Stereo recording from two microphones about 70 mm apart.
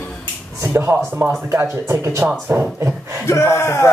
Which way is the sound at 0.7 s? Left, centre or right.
Right.